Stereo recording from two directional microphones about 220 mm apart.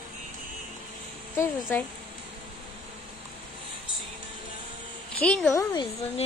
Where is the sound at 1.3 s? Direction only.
10° left (ahead or behind).